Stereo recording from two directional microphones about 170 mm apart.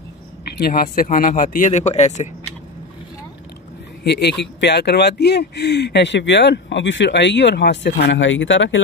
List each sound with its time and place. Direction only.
0.6 s speech: 60° left (ahead or behind); by 2.2 s 40° left (ahead or behind)
4.0 s speech: 80° left